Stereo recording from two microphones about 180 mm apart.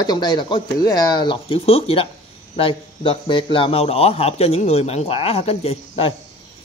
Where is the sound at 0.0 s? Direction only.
20° left (ahead or behind).